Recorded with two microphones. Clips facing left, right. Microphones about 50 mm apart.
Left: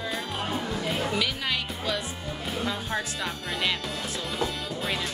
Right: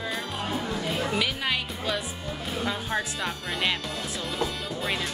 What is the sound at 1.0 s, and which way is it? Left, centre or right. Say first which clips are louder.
Music: right 1 dB; centre.